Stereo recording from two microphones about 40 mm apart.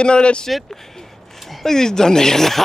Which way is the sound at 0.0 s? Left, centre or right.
Left.